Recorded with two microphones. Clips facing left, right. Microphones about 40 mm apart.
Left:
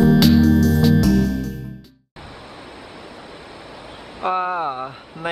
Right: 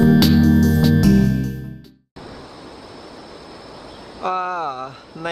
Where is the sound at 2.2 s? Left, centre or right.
Left.